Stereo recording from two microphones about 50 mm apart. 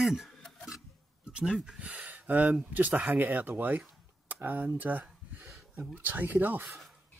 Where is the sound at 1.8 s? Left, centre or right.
Right.